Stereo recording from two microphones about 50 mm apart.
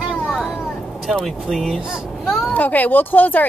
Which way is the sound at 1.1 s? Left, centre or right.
Centre.